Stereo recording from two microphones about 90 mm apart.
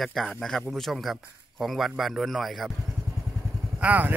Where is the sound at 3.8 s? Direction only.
15° right (ahead or behind).